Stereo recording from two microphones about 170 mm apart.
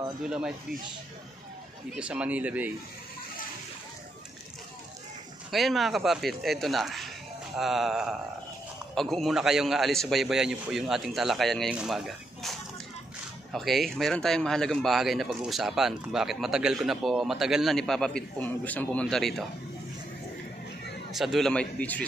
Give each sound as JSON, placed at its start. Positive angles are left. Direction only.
{"t": 0.2, "sound": "speech", "side_deg": -5}
{"t": 2.0, "sound": "speech", "side_deg": -5}
{"t": 5.5, "sound": "speech", "side_deg": 0}
{"t": 21.1, "sound": "speech", "side_deg": 0}